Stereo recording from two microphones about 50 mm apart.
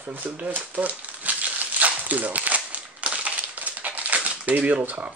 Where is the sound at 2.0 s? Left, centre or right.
Right.